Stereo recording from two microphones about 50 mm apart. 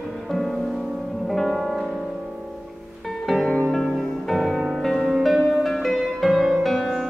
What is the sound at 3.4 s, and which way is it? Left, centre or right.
Music, centre.